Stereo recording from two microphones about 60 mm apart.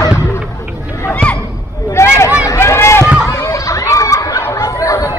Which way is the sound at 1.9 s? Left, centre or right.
Left.